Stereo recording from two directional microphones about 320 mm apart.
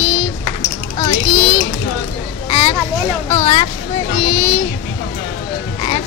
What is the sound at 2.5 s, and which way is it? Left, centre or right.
Children playing, centre.